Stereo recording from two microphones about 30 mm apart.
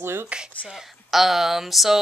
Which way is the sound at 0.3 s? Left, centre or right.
Right.